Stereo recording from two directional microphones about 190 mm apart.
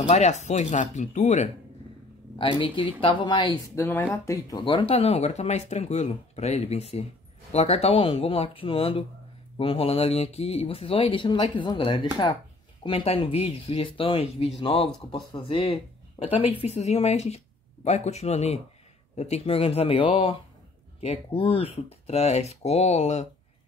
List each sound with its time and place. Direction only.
0.0 s speech: 35° left (ahead or behind)
2.3 s speech: 25° left (ahead or behind)